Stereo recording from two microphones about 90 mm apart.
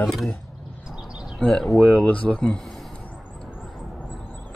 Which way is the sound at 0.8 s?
10° right (ahead or behind).